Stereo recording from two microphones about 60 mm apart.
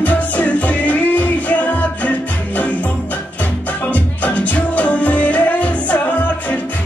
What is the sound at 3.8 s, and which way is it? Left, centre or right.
Music, left.